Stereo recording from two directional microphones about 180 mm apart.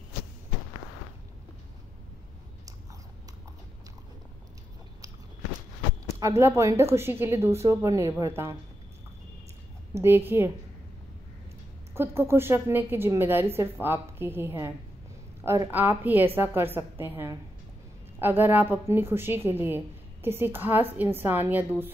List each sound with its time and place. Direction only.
6.0 s a woman's voice: 15° right (ahead or behind)
9.9 s a woman's voice: 10° right (ahead or behind)
11.9 s a woman's voice: 15° right (ahead or behind)